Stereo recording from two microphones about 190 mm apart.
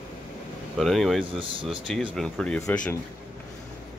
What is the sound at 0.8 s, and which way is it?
Speech, centre (ahead or behind).